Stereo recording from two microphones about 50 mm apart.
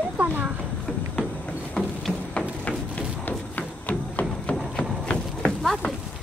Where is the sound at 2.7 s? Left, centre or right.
Left.